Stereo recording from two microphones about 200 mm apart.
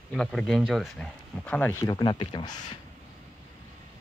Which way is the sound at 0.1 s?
5° left (ahead or behind).